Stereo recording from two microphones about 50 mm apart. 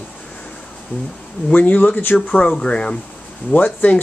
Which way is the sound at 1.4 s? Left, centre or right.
Left.